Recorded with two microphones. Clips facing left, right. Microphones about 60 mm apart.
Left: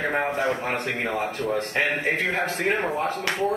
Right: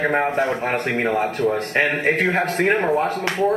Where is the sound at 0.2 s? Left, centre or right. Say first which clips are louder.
Right 4 dB; right.